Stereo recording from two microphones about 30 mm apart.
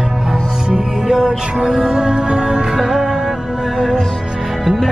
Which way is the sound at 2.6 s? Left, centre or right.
Centre.